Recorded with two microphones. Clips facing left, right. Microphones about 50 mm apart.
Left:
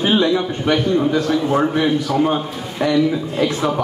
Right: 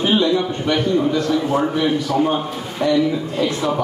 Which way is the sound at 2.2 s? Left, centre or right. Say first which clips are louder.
Left 1 dB; centre.